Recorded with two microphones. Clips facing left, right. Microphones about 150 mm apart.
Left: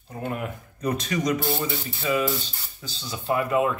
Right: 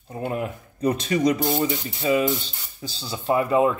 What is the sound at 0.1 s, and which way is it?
Speech, 30° right (ahead or behind).